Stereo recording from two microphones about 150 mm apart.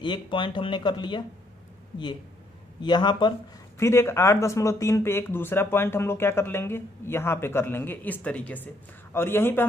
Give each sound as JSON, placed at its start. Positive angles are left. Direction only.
{"t": 0.0, "sound": "speech", "side_deg": 30}
{"t": 2.8, "sound": "speech", "side_deg": 30}
{"t": 3.7, "sound": "speech", "side_deg": 15}